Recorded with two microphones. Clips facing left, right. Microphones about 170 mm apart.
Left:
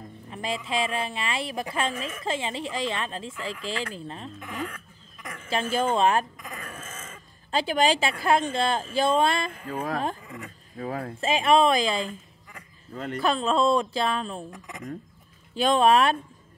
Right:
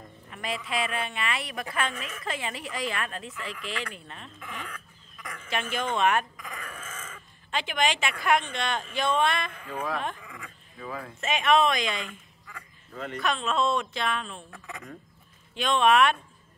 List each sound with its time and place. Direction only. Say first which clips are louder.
0.3 s a woman's voice: left 3 dB; 30° left (ahead or behind); by 11.1 s 45° left (ahead or behind)
11.1 s speech: left 3 dB; 30° left (ahead or behind)
15.5 s speech: left 3 dB; 35° left (ahead or behind)